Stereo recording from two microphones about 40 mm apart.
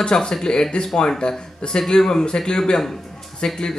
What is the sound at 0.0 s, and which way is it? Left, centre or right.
A man's voice, centre.